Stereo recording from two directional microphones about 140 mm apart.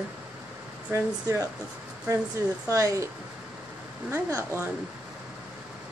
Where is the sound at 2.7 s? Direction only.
20° right (ahead or behind).